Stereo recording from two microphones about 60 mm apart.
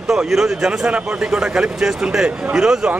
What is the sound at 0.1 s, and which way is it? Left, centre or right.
Speech, centre.